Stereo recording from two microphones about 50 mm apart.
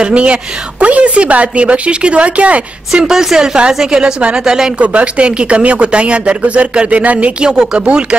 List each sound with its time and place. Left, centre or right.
0.0 s speech: right
3.0 s a woman's voice: centre
4.7 s speech: right